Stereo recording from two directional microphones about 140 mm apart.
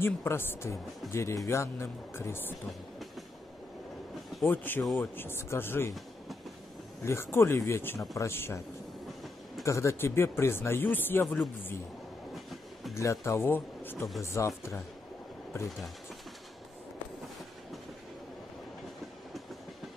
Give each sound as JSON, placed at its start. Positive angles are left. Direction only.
{"t": 0.0, "sound": "speech", "side_deg": 15}
{"t": 4.5, "sound": "speech", "side_deg": 15}
{"t": 7.1, "sound": "speech", "side_deg": 15}
{"t": 9.7, "sound": "speech", "side_deg": 20}
{"t": 12.9, "sound": "speech", "side_deg": 20}